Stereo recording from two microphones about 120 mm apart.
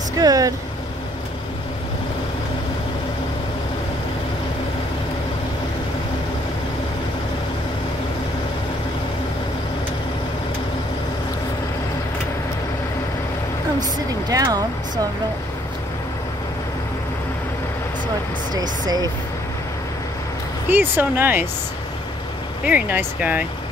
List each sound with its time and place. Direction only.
0.2 s speech: 30° right (ahead or behind)
14.3 s speech: 35° right (ahead or behind)
18.5 s speech: 35° right (ahead or behind)
20.6 s speech: 15° right (ahead or behind)
22.7 s speech: 15° right (ahead or behind)